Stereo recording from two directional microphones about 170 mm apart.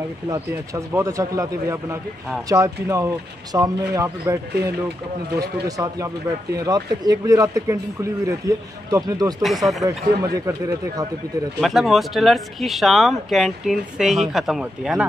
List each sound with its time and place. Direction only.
0.3 s speech: 20° right (ahead or behind)
9.4 s speech: centre (ahead or behind)
10.2 s speech: 20° right (ahead or behind)
11.6 s speech: centre (ahead or behind)